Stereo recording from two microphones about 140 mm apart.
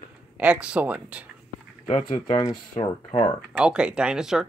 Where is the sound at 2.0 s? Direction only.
45° left (ahead or behind).